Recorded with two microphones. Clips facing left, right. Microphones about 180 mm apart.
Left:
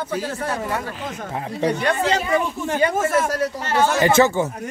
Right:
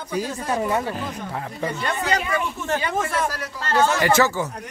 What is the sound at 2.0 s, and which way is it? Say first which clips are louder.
Speech: left 2 dB; 25° left (ahead or behind).